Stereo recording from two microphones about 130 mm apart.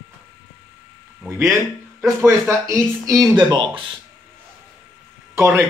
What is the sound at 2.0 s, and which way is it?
Speech, 20° right (ahead or behind).